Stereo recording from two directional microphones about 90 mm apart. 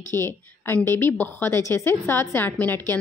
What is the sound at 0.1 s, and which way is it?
A woman's voice, 25° left (ahead or behind).